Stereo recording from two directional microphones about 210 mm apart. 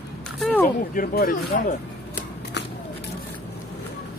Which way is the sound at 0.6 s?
45° left (ahead or behind).